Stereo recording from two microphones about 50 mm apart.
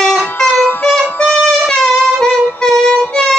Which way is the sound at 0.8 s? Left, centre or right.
Left.